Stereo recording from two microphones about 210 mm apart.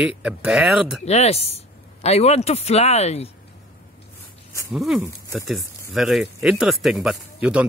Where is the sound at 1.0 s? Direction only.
30° left (ahead or behind).